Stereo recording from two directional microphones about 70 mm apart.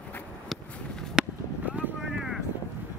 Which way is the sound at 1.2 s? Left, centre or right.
Centre.